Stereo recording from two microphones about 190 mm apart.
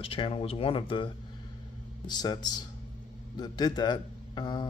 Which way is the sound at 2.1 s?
20° left (ahead or behind).